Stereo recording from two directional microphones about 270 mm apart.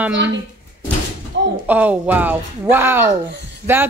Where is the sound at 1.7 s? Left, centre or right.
Centre.